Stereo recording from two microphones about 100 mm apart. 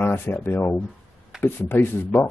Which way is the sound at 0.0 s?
25° left (ahead or behind).